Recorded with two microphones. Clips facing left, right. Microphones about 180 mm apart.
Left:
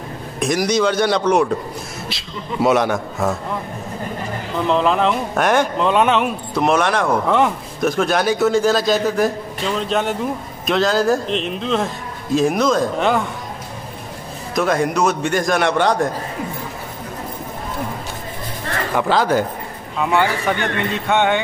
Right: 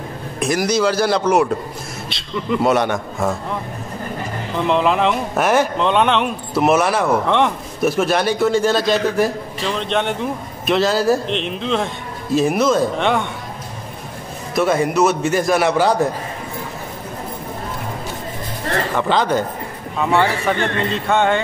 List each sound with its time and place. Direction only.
0.4 s speech: centre (ahead or behind)
2.6 s speech: centre (ahead or behind)
4.6 s speech: centre (ahead or behind)
14.5 s speech: centre (ahead or behind)
18.9 s a man's voice: 5° left (ahead or behind)